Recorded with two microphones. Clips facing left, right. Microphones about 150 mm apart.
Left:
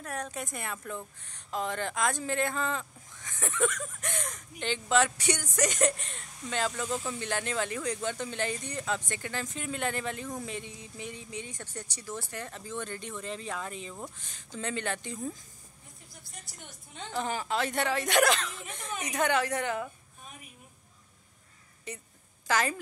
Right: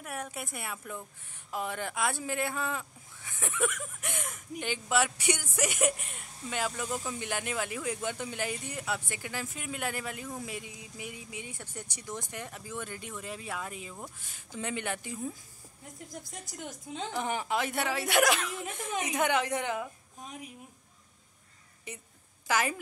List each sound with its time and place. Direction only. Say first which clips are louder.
0.0 s a woman's voice: left 2 dB; 10° right (ahead or behind)
16.3 s a woman's voice: right 7 dB; 90° right
17.1 s a woman's voice: left 1 dB; 15° right (ahead or behind)
22.5 s a woman's voice: left 1 dB; 10° right (ahead or behind)